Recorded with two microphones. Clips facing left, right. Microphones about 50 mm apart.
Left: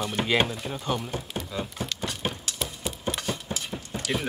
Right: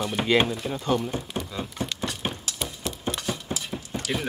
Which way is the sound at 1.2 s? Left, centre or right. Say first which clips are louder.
Right 1 dB; centre.